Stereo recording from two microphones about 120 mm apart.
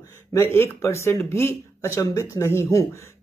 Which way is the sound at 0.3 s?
20° left (ahead or behind).